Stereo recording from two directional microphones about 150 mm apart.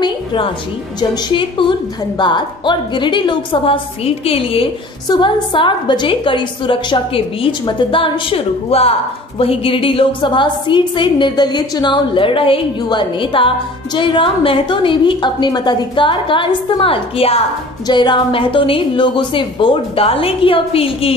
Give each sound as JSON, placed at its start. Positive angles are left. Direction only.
{"t": 0.0, "sound": "music", "side_deg": 30}
{"t": 1.3, "sound": "a woman's voice", "side_deg": 35}